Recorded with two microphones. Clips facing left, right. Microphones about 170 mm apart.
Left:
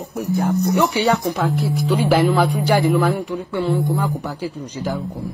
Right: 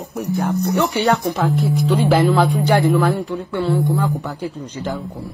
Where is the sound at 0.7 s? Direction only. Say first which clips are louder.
Even; 15° left (ahead or behind).